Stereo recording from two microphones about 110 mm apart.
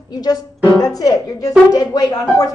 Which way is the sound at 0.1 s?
35° left (ahead or behind).